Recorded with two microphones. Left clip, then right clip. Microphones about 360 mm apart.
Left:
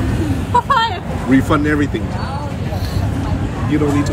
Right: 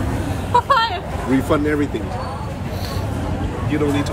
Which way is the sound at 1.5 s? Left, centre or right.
Left.